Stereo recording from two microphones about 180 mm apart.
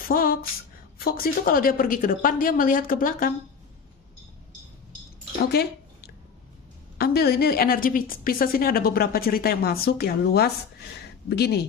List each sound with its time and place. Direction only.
0.0 s speech: 55° left (ahead or behind)
5.4 s a sound: 60° left (ahead or behind)
7.0 s a woman's voice: 60° left (ahead or behind)